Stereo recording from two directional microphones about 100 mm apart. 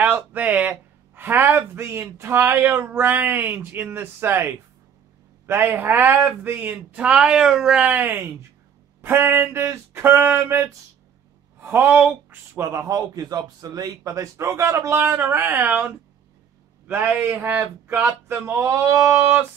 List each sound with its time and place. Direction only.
0.0 s speech: 15° right (ahead or behind)
16.8 s a sound: 15° right (ahead or behind)
18.0 s speech: 25° right (ahead or behind)